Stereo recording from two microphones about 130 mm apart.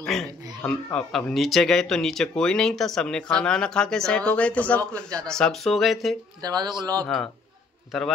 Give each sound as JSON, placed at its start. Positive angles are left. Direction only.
{"t": 0.0, "sound": "speech", "side_deg": 5}
{"t": 6.4, "sound": "speech", "side_deg": -30}